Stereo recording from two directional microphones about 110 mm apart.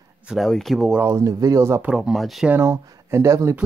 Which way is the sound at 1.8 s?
5° right (ahead or behind).